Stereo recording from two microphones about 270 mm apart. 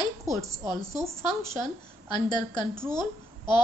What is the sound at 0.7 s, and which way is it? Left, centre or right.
A woman's voice, centre.